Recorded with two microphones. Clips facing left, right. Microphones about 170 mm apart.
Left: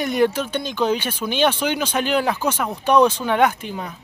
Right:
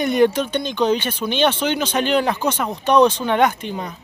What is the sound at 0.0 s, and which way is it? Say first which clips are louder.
Speech: right 3 dB; 5° left (ahead or behind).